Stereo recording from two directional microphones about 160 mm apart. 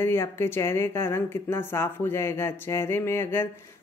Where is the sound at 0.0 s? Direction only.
15° left (ahead or behind).